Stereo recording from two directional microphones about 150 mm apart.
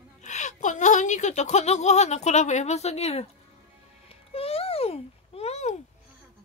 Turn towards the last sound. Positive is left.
turn(degrees=45)  # may be behind; listen again after turning